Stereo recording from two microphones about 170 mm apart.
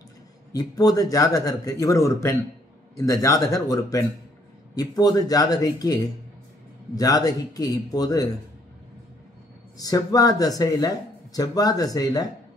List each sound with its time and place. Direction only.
0.5 s speech: 20° left (ahead or behind)
9.8 s speech: 20° left (ahead or behind)